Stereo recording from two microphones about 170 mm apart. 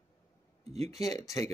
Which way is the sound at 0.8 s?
20° left (ahead or behind).